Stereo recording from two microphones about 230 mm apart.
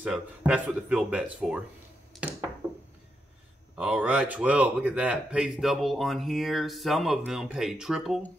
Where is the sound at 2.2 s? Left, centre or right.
Centre.